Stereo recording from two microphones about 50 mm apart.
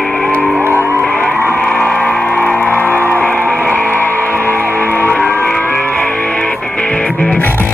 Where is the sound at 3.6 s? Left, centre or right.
Left.